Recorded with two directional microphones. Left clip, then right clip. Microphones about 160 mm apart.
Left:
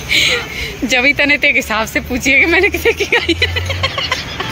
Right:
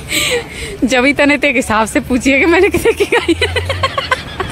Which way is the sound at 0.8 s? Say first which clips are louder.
Right 1 dB; 50° right (ahead or behind).